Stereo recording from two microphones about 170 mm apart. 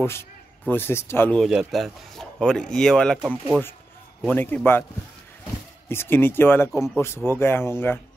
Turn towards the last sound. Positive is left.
turn(degrees=15)  # may be behind; listen again after turning